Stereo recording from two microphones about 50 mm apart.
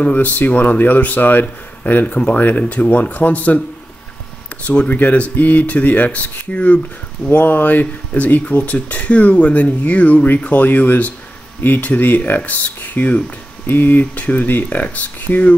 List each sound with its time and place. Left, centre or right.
0.0 s speech: left
2.1 s speech: left
2.4 s speech: left
4.6 s speech: left